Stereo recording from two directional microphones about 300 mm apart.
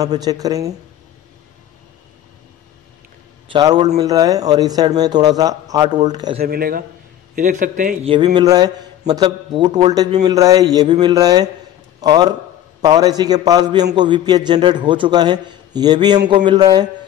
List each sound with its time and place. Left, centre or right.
0.0 s a man's voice: centre
3.5 s a man's voice: centre
4.0 s a man's voice: centre
6.4 s a man's voice: right; by 16.8 s centre